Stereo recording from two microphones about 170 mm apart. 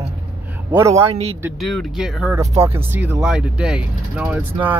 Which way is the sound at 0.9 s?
35° right (ahead or behind).